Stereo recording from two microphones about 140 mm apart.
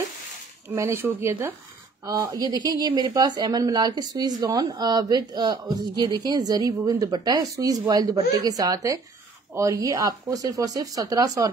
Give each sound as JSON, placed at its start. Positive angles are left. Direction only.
{"t": 0.7, "sound": "speech", "side_deg": -15}